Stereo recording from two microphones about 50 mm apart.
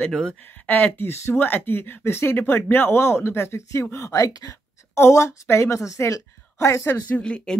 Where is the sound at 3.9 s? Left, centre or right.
Left.